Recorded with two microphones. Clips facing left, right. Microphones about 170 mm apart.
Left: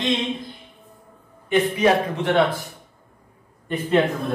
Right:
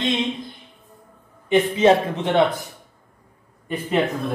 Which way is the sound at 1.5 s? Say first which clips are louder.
Right 2 dB; 20° right (ahead or behind).